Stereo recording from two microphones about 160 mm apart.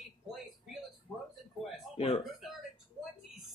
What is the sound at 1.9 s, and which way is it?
Speech, 35° left (ahead or behind).